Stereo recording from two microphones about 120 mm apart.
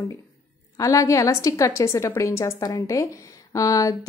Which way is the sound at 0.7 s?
30° left (ahead or behind).